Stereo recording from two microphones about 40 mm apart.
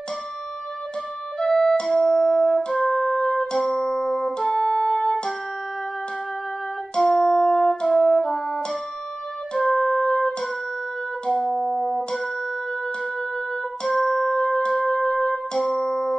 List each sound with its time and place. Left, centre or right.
1.4 s music: left
1.9 s music: centre
4.5 s music: left
7.2 s music: centre
13.9 s music: centre